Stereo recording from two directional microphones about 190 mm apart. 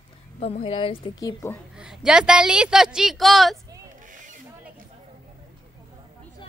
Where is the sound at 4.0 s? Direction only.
40° right (ahead or behind).